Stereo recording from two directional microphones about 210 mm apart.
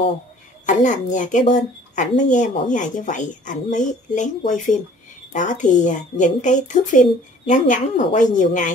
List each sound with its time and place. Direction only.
1.1 s speech: 35° left (ahead or behind)